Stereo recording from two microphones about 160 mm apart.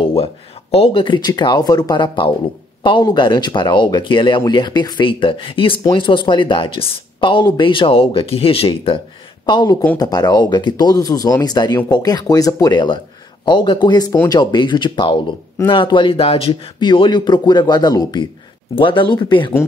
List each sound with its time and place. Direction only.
0.0 s speech: 35° left (ahead or behind)